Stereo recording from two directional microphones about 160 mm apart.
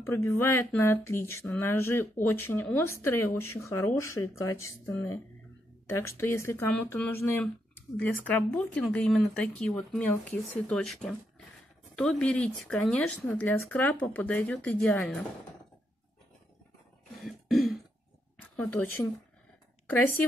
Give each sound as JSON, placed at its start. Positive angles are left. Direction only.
{"t": 0.0, "sound": "speech", "side_deg": 15}
{"t": 17.2, "sound": "throat clearing", "side_deg": 0}